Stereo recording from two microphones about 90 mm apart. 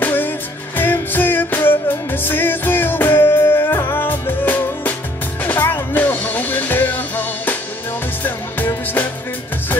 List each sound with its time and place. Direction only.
0.0 s music: 20° left (ahead or behind)